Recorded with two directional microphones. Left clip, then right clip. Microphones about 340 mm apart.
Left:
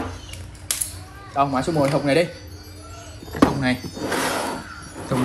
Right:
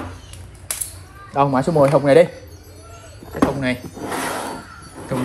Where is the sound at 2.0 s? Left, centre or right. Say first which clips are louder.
Right 9 dB; centre.